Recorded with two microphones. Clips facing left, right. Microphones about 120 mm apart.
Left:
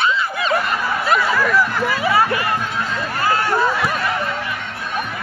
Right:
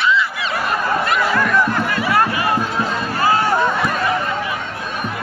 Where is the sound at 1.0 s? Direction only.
5° left (ahead or behind).